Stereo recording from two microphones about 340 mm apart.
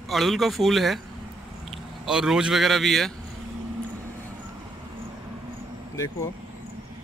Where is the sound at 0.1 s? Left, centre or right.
Centre.